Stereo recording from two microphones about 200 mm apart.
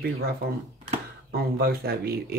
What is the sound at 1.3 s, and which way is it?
Speech, 50° right (ahead or behind).